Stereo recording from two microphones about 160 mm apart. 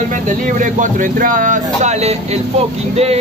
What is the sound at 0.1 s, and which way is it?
Speech, 55° right (ahead or behind).